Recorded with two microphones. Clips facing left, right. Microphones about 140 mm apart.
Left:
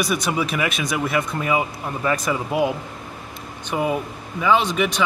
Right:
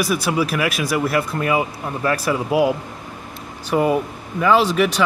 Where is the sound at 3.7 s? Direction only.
Centre (ahead or behind).